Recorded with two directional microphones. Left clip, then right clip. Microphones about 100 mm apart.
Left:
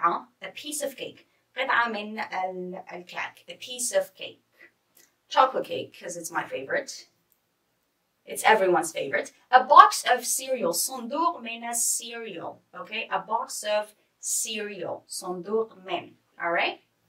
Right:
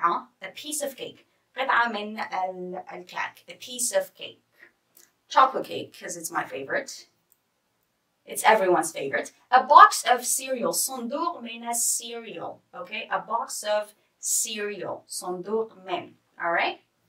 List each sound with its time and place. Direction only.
0.0 s a woman's voice: 10° right (ahead or behind)
8.3 s a woman's voice: 15° right (ahead or behind)